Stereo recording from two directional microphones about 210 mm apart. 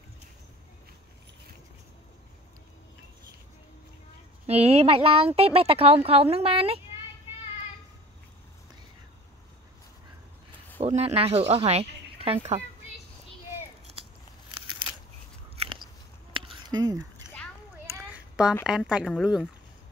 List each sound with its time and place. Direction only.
4.5 s speech: 30° right (ahead or behind)
10.8 s speech: 30° right (ahead or behind)
15.5 s biting: 25° right (ahead or behind)
16.5 s a sound: 20° right (ahead or behind)
17.8 s speech: 10° right (ahead or behind)